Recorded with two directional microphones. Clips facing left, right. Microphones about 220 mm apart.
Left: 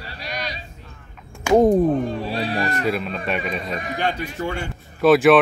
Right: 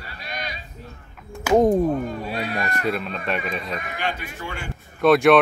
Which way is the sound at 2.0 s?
30° left (ahead or behind).